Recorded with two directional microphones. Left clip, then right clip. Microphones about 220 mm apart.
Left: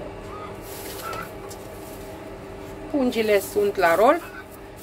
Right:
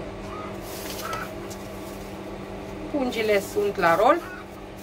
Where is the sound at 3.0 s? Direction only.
40° left (ahead or behind).